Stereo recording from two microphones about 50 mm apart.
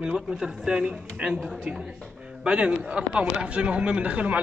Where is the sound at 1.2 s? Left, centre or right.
Right.